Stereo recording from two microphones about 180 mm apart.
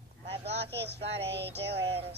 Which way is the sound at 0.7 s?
70° right (ahead or behind).